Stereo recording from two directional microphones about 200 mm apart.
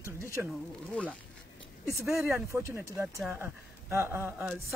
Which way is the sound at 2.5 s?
15° right (ahead or behind).